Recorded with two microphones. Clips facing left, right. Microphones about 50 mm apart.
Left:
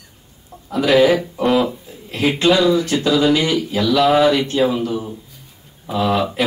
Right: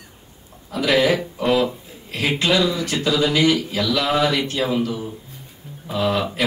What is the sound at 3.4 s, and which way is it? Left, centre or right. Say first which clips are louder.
Speech: even; left.